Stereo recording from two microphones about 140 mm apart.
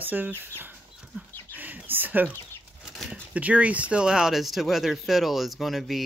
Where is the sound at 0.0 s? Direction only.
10° right (ahead or behind).